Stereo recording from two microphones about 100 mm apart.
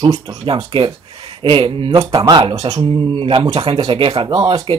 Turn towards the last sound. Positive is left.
turn(degrees=-55)  # may be behind; listen again after turning